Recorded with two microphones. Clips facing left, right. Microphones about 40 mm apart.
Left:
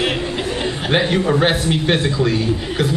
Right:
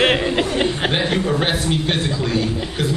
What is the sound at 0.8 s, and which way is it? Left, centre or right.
Speech, centre.